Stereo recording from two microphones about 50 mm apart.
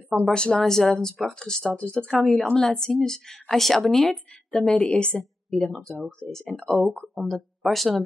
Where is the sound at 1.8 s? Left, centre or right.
Left.